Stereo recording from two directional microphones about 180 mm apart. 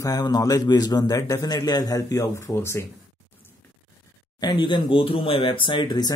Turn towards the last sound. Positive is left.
turn(degrees=25)  # may be behind; listen again after turning